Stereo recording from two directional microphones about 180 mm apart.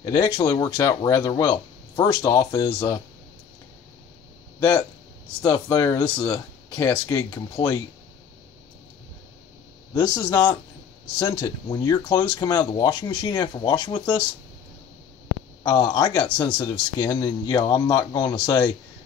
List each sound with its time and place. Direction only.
0.0 s speech: 20° left (ahead or behind)
4.6 s speech: 20° left (ahead or behind)
9.9 s speech: 25° left (ahead or behind)
15.6 s speech: 25° left (ahead or behind)